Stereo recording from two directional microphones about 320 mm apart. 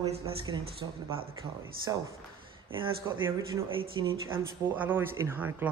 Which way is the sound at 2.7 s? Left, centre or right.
Centre.